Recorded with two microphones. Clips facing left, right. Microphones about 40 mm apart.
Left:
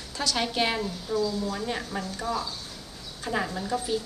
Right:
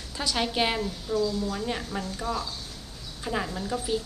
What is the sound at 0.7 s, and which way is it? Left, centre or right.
A woman's voice, centre.